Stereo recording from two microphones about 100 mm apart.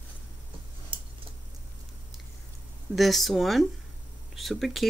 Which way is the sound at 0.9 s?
55° right (ahead or behind).